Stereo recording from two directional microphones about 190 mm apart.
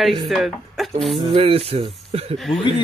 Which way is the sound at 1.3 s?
30° right (ahead or behind).